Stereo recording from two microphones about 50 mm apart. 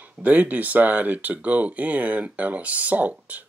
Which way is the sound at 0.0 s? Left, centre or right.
Right.